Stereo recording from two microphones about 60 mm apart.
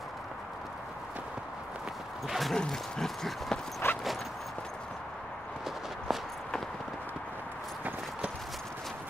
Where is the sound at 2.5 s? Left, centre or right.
Centre.